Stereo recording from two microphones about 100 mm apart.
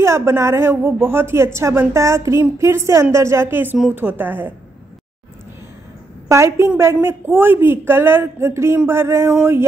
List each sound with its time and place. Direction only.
0.0 s speech: 25° right (ahead or behind)
6.3 s speech: 30° right (ahead or behind)